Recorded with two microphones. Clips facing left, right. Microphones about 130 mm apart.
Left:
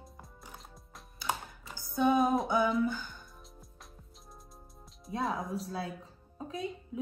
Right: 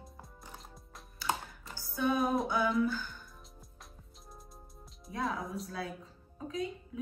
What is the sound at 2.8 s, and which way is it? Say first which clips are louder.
Speech: even; 20° left (ahead or behind).